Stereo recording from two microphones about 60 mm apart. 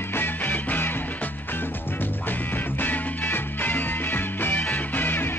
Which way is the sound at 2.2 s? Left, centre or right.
Left.